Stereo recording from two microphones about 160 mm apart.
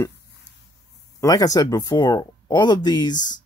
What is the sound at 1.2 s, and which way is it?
Speech, 20° left (ahead or behind).